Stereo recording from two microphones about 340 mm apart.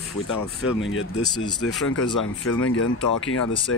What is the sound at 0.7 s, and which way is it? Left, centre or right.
Speech, left.